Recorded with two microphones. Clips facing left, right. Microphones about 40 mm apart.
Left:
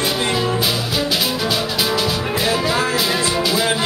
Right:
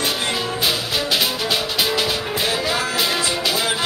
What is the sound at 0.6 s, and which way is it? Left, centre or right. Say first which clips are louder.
Music: left 2 dB; centre.